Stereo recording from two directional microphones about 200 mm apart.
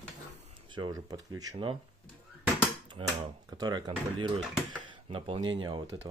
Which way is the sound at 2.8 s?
25° right (ahead or behind).